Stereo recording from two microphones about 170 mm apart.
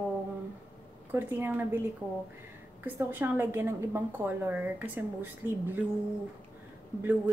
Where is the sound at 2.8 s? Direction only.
10° right (ahead or behind).